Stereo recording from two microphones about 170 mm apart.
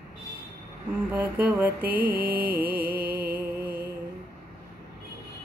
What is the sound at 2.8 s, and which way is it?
Music, 55° right (ahead or behind).